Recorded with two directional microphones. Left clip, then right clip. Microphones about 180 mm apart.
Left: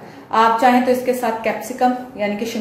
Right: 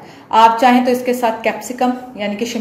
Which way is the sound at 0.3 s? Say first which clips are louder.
Right 4 dB; 55° right (ahead or behind).